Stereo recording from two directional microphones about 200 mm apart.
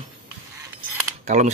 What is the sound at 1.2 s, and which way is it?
Mechanisms, 35° right (ahead or behind).